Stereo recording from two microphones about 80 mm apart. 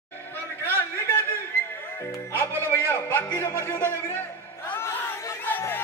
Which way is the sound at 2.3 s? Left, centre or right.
Left.